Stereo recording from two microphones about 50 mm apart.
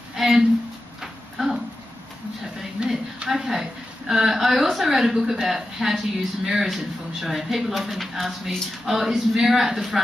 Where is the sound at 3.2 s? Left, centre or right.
Centre.